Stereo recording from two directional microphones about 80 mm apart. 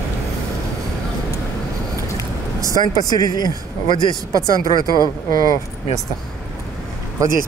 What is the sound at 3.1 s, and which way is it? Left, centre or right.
Speech, left.